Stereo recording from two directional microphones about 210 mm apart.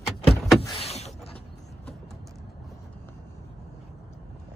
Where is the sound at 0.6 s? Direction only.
25° left (ahead or behind).